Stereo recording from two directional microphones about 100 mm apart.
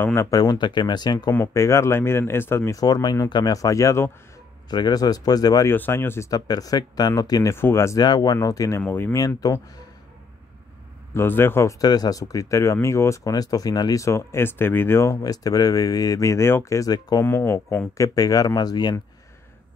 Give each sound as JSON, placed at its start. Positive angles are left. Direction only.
{"t": 0.0, "sound": "speech", "side_deg": 25}
{"t": 0.4, "sound": "speech", "side_deg": 45}
{"t": 1.3, "sound": "speech", "side_deg": 30}
{"t": 2.7, "sound": "speech", "side_deg": 40}
{"t": 4.6, "sound": "speech", "side_deg": 45}
{"t": 5.7, "sound": "speech", "side_deg": 25}
{"t": 6.3, "sound": "speech", "side_deg": 40}
{"t": 7.5, "sound": "speech", "side_deg": 25}
{"t": 8.0, "sound": "speech", "side_deg": 45}
{"t": 8.8, "sound": "speech", "side_deg": 20}
{"t": 9.1, "sound": "speech", "side_deg": 35}
{"t": 11.1, "sound": "speech", "side_deg": 25}
{"t": 11.8, "sound": "speech", "side_deg": 40}
{"t": 15.2, "sound": "speech", "side_deg": 40}